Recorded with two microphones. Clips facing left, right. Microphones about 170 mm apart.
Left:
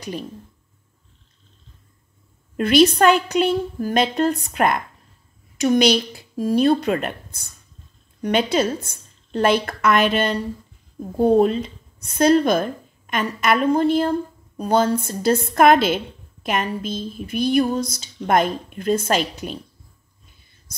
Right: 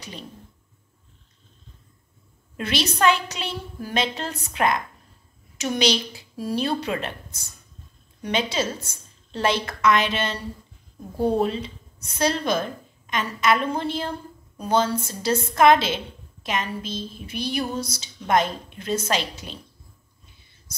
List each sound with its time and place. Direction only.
2.5 s a woman's voice: 50° left (ahead or behind)
11.3 s a woman's voice: 50° left (ahead or behind)